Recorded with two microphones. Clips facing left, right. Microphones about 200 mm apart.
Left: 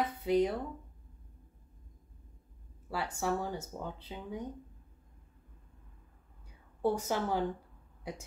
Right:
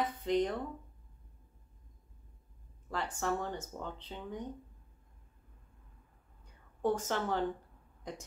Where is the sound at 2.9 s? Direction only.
10° left (ahead or behind).